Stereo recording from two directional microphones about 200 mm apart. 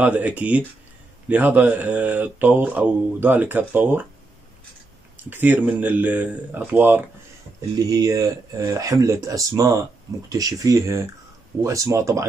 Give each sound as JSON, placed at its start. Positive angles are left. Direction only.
{"t": 0.0, "sound": "speech", "side_deg": -10}
{"t": 5.3, "sound": "speech", "side_deg": -10}